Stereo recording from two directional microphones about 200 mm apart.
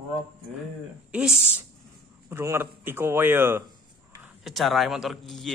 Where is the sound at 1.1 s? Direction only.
5° right (ahead or behind).